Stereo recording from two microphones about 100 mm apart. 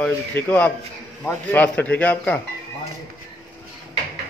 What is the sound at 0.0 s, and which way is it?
Speech, 10° left (ahead or behind).